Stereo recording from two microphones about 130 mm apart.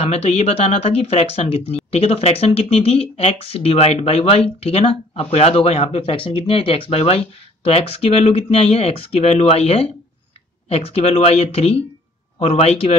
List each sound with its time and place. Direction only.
0.0 s speech: 50° left (ahead or behind)